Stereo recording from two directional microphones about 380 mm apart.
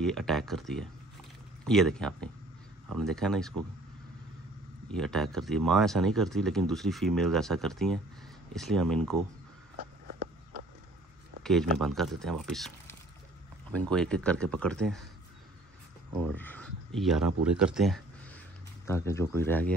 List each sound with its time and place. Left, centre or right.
0.0 s speech: centre
4.9 s speech: centre
10.0 s a sound: right
11.4 s speech: centre
16.2 s speech: centre